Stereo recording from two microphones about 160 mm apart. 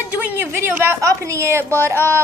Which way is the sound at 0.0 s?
10° right (ahead or behind).